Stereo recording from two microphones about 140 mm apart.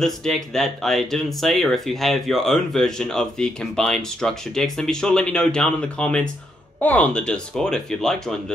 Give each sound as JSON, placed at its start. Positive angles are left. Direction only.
{"t": 0.0, "sound": "speech", "side_deg": 5}